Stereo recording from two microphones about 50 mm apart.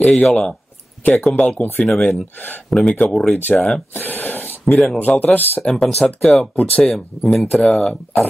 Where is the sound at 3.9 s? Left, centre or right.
Left.